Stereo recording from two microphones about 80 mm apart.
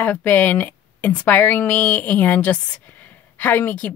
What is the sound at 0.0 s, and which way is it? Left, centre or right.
Speech, left.